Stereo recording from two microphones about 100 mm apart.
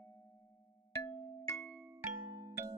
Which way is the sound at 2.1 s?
30° right (ahead or behind).